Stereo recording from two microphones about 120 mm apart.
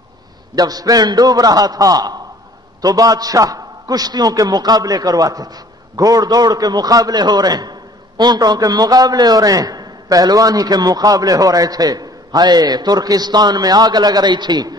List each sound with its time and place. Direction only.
0.6 s a man's voice: 30° right (ahead or behind)